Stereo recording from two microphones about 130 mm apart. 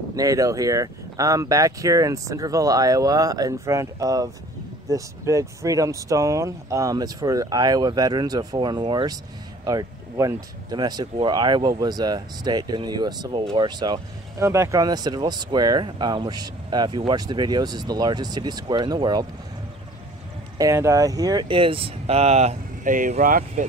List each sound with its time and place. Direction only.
0.1 s speech: 25° right (ahead or behind)
14.4 s speech: 20° right (ahead or behind)
20.5 s speech: 25° right (ahead or behind); by 23.6 s 80° right